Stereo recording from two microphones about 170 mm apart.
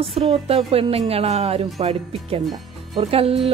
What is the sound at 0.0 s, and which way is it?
Speech, 35° right (ahead or behind).